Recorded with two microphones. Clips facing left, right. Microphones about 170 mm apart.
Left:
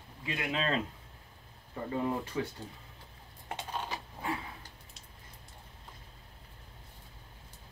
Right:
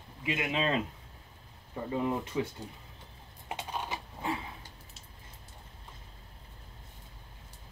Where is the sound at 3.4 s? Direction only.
20° right (ahead or behind).